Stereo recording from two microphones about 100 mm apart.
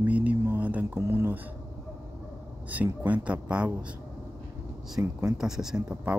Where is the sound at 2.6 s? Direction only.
15° right (ahead or behind).